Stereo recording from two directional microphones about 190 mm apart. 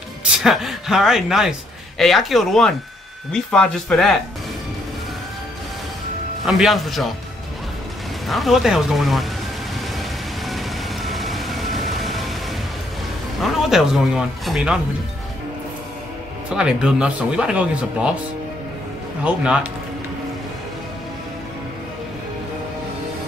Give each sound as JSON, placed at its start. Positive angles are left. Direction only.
{"t": 0.2, "sound": "speech", "side_deg": 0}
{"t": 6.4, "sound": "speech", "side_deg": 0}
{"t": 8.3, "sound": "speech", "side_deg": 0}
{"t": 9.9, "sound": "vehicle", "side_deg": 0}
{"t": 13.4, "sound": "speech", "side_deg": 0}
{"t": 16.4, "sound": "speech", "side_deg": -5}
{"t": 19.2, "sound": "speech", "side_deg": -5}